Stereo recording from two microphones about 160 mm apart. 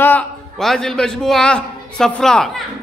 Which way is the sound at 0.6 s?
Centre (ahead or behind).